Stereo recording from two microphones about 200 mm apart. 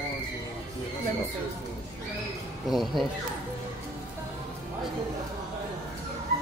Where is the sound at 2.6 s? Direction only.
Centre (ahead or behind).